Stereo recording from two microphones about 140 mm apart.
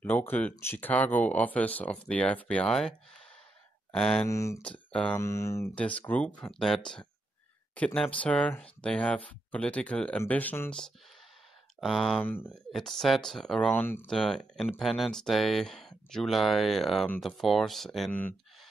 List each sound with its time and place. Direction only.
0.0 s speech: 15° left (ahead or behind)
3.9 s speech: 5° left (ahead or behind)
4.3 s speech: 20° left (ahead or behind)
4.6 s speech: 5° left (ahead or behind)
5.2 s speech: 20° left (ahead or behind)
5.8 s speech: 10° left (ahead or behind)
11.8 s speech: centre (ahead or behind)
12.2 s speech: 15° left (ahead or behind)
12.7 s speech: centre (ahead or behind)
13.7 s speech: 15° left (ahead or behind)
14.0 s speech: 5° left (ahead or behind)